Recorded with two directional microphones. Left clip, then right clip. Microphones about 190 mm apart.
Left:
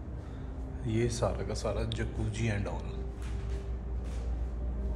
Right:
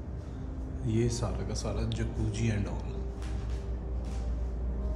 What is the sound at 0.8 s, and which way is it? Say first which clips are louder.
Speech: left 2 dB; 10° right (ahead or behind).